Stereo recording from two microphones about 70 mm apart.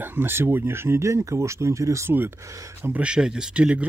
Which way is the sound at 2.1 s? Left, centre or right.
Right.